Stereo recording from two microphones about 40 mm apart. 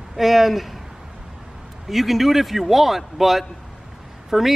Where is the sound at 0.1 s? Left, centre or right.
Centre.